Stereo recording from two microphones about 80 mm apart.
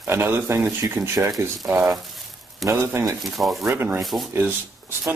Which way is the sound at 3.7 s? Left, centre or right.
Right.